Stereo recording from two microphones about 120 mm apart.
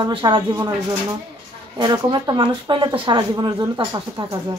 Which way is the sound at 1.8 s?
40° right (ahead or behind).